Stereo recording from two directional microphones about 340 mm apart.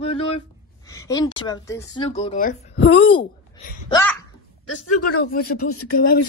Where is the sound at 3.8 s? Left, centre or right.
Centre.